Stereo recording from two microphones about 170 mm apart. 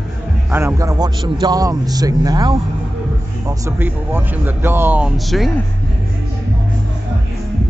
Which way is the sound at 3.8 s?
10° right (ahead or behind).